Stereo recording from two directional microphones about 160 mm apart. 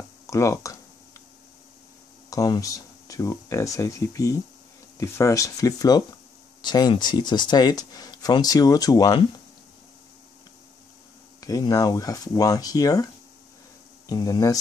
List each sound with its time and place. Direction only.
0.3 s speech: 20° left (ahead or behind)
2.2 s speech: 20° left (ahead or behind)
11.4 s speech: 25° left (ahead or behind)